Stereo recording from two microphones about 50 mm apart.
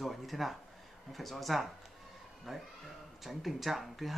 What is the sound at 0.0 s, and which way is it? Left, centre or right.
Speech, centre.